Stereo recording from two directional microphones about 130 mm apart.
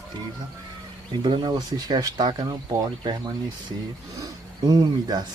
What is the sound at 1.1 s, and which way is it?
Speech, 35° right (ahead or behind).